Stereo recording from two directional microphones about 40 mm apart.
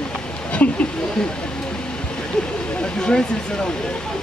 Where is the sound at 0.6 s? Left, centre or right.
Left.